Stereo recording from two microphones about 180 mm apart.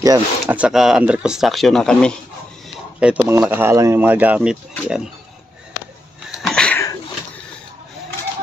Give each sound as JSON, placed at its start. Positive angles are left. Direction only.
{"t": 0.0, "sound": "speech", "side_deg": -20}
{"t": 0.6, "sound": "speech", "side_deg": -5}
{"t": 3.0, "sound": "speech", "side_deg": -10}
{"t": 6.4, "sound": "a sound", "side_deg": 5}